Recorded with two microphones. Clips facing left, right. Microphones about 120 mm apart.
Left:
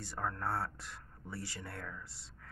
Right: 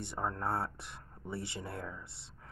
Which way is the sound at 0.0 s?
25° right (ahead or behind).